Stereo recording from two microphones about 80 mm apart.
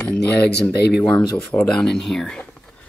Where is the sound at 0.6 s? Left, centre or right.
Centre.